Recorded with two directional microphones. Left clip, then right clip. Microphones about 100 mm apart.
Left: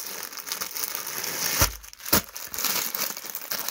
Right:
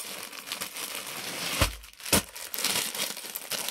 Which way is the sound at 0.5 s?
40° left (ahead or behind).